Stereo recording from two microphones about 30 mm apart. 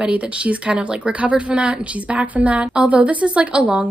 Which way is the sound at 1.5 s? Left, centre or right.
Right.